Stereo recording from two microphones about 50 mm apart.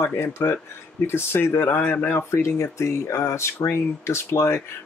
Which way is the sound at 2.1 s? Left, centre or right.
Left.